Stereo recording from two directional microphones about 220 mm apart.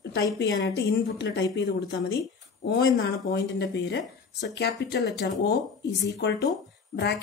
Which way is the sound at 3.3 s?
50° left (ahead or behind).